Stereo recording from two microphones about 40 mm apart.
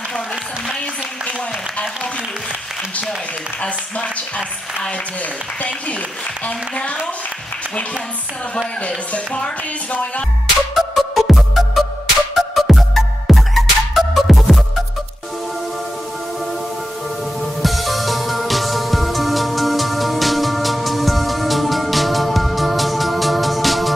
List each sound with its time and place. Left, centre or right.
3.6 s speech: left
6.4 s a woman's voice: left
8.8 s speech: left
10.7 s music: centre
17.6 s music: centre